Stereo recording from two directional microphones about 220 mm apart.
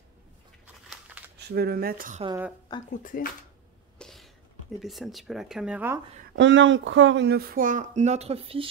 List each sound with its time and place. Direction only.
1.5 s speech: 45° right (ahead or behind)
2.2 s a woman's voice: 10° right (ahead or behind)
2.9 s speech: 40° left (ahead or behind)
4.0 s a sound: centre (ahead or behind)
4.7 s speech: centre (ahead or behind)
6.3 s speech: 55° right (ahead or behind); by 8.6 s 25° right (ahead or behind)